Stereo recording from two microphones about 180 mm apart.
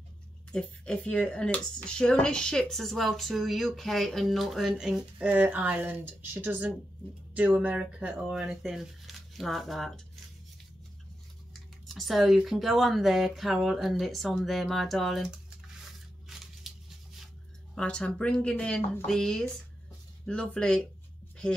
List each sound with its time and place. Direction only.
0.5 s speech: 5° left (ahead or behind)
11.8 s speech: centre (ahead or behind)
16.6 s a sound: centre (ahead or behind)
17.7 s speech: 5° left (ahead or behind)